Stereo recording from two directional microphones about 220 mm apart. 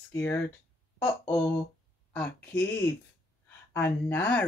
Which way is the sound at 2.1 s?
5° left (ahead or behind).